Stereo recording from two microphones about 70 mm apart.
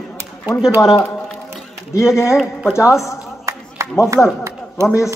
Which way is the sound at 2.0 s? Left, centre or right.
Left.